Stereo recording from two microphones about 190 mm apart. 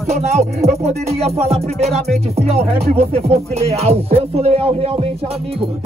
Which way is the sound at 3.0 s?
35° right (ahead or behind).